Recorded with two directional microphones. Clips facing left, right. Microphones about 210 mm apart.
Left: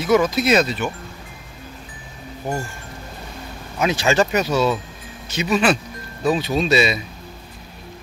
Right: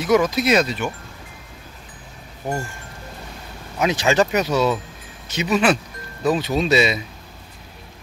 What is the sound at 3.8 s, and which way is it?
Speech, 20° right (ahead or behind).